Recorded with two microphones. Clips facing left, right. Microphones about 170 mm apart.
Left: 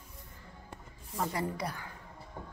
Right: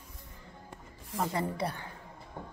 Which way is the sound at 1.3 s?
25° right (ahead or behind).